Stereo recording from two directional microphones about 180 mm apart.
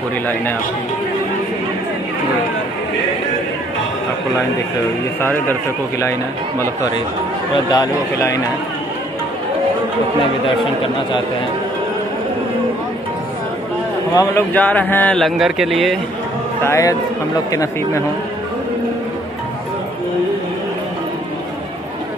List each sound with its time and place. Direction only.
5.2 s speech: 10° left (ahead or behind)
7.7 s speech: 20° left (ahead or behind)
14.1 s speech: 10° left (ahead or behind)
16.6 s speech: 15° left (ahead or behind)